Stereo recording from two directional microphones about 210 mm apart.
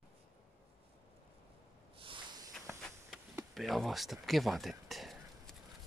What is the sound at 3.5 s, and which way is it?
Speech, centre (ahead or behind).